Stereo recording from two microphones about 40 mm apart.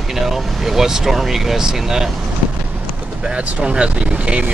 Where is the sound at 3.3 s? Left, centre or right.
Right.